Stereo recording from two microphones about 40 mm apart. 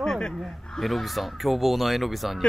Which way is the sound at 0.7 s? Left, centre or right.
Centre.